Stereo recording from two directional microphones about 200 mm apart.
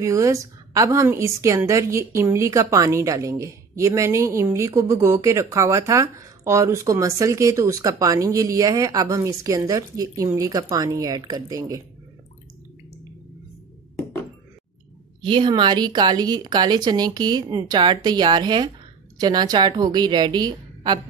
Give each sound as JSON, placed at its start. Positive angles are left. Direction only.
{"t": 0.0, "sound": "a woman's voice", "side_deg": -15}
{"t": 15.2, "sound": "speech", "side_deg": -25}